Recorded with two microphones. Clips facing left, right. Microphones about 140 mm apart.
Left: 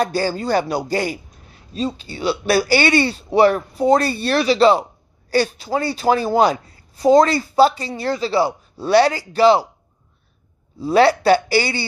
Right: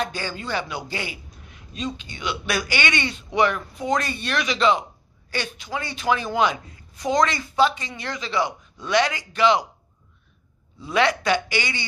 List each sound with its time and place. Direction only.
0.0 s a man's voice: 35° left (ahead or behind)
10.8 s a man's voice: 35° left (ahead or behind)